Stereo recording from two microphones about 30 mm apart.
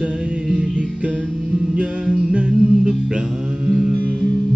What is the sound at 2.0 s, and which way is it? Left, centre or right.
Music, right.